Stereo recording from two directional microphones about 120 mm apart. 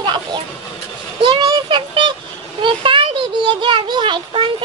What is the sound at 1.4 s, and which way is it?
Child singing, 35° right (ahead or behind).